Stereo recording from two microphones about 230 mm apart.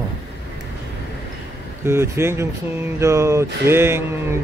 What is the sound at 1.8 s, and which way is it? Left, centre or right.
Speech, centre.